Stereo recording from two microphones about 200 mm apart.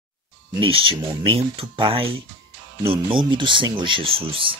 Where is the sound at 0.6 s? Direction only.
25° right (ahead or behind).